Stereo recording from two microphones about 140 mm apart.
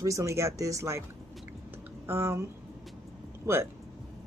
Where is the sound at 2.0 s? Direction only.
20° right (ahead or behind).